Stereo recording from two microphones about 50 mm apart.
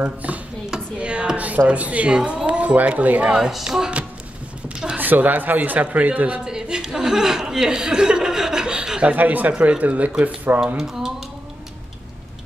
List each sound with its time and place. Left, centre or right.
0.0 s a woman's voice: right
0.9 s a sound: right
1.7 s a woman's voice: right
3.3 s speech: centre
4.6 s a sound: centre
4.9 s speech: right
6.4 s speech: centre
9.1 s speech: right
10.8 s a sound: centre